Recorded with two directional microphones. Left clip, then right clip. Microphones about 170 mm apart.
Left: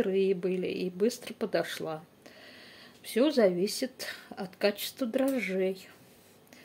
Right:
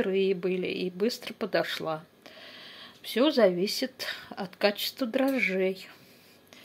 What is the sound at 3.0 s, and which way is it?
A woman's voice, 10° left (ahead or behind).